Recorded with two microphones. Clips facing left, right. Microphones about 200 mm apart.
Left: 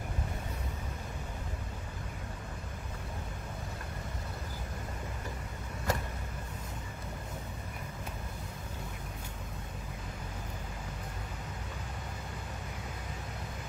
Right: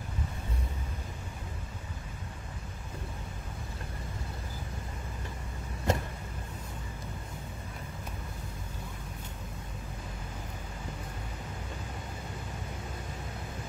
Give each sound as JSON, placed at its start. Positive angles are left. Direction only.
{"t": 5.9, "sound": "vehicle", "side_deg": -25}